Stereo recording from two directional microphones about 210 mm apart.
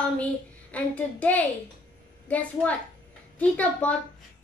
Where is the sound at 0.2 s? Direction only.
5° left (ahead or behind).